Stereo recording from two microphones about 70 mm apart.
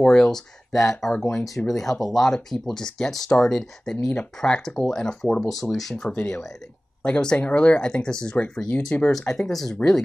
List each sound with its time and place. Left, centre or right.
0.0 s speech: centre
6.1 s speech: centre
8.9 s speech: left
9.5 s speech: centre